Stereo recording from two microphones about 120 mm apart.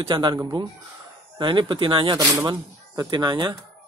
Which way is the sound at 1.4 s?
40° right (ahead or behind).